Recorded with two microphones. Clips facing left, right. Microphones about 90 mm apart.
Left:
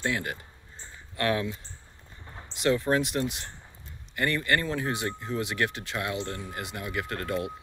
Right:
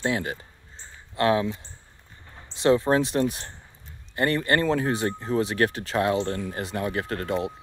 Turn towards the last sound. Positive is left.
turn(degrees=-25)  # may be behind; listen again after turning